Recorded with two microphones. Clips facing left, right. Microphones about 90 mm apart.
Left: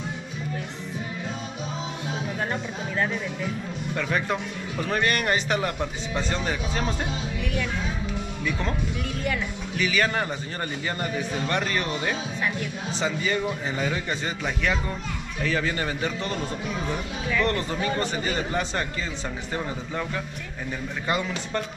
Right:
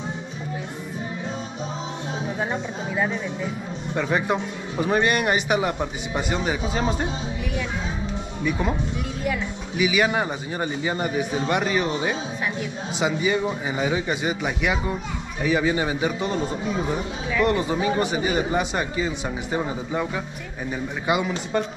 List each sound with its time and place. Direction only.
2.2 s music: 10° right (ahead or behind)
3.4 s a man's voice: 20° right (ahead or behind)
8.5 s a man's voice: 15° right (ahead or behind)